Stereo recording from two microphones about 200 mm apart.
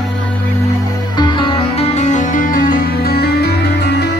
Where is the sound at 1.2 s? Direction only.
25° left (ahead or behind).